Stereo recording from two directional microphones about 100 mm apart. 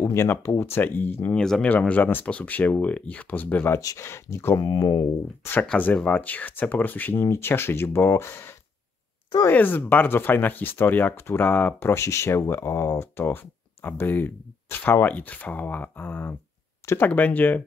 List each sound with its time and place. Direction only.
0.0 s speech: 30° left (ahead or behind)
1.4 s speech: 5° left (ahead or behind)
1.7 s speech: 15° left (ahead or behind)
3.8 s speech: 30° left (ahead or behind)
5.7 s speech: 15° left (ahead or behind)